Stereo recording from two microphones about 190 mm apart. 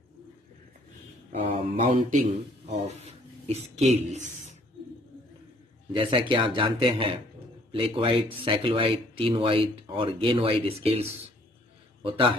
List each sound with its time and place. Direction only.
1.5 s speech: 30° right (ahead or behind)
5.9 s a man's voice: 25° right (ahead or behind)